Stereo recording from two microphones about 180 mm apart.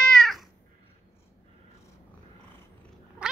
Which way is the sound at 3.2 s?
5° right (ahead or behind).